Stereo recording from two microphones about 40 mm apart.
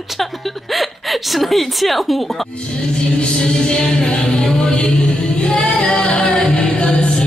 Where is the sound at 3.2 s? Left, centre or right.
Left.